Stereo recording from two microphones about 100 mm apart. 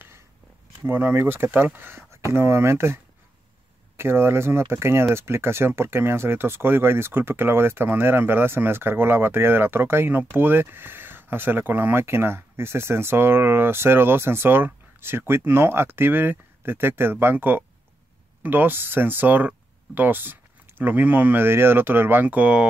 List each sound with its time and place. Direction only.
0.8 s speech: 20° right (ahead or behind)